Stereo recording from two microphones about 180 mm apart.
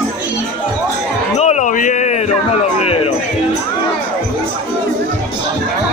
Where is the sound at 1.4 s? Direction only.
40° left (ahead or behind).